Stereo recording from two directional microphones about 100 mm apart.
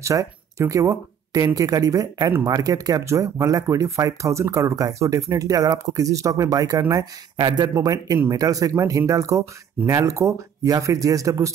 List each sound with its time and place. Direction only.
0.0 s speech: 30° right (ahead or behind)